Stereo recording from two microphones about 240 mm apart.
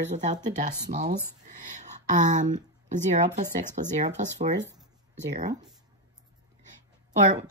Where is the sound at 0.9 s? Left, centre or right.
Right.